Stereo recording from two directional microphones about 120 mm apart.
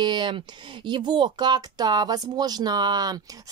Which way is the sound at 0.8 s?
40° right (ahead or behind).